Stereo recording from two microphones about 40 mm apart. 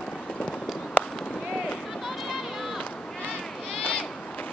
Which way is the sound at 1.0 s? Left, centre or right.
Left.